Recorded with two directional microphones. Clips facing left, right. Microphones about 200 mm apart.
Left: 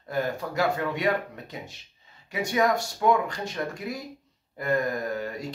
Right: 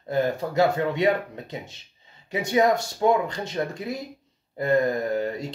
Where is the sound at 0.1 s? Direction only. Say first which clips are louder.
Right 5 dB; 25° right (ahead or behind).